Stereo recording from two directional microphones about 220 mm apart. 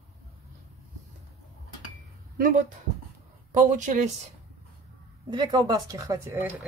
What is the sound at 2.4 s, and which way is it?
Speech, 35° right (ahead or behind).